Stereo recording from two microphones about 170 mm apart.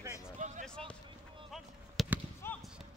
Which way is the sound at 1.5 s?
Centre (ahead or behind).